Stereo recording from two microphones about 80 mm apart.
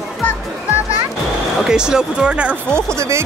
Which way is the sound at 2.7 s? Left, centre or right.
Right.